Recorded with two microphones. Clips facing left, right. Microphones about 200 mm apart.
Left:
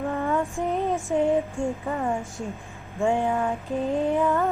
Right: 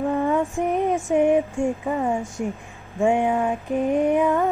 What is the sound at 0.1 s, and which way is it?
Female singing, 15° right (ahead or behind).